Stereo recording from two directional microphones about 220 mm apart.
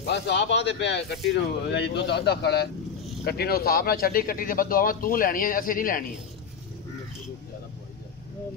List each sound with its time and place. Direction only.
0.0 s speech: 55° left (ahead or behind)